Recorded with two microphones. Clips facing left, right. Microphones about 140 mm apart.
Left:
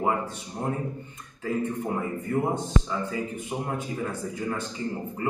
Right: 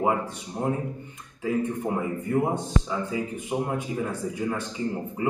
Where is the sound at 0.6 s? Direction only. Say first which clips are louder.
Right 2 dB; 15° right (ahead or behind).